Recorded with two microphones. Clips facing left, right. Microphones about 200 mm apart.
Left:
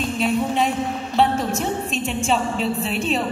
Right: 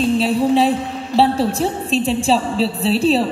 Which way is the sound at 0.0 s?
35° right (ahead or behind).